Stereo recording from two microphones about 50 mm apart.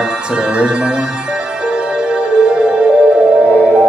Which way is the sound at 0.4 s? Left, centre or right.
Right.